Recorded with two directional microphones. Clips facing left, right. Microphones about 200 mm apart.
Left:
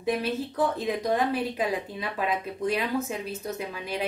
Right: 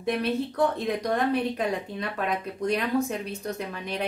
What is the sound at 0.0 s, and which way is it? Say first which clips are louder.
Speech: right 1 dB; centre (ahead or behind).